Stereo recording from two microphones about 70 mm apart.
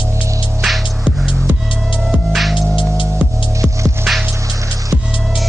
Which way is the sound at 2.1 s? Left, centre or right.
Centre.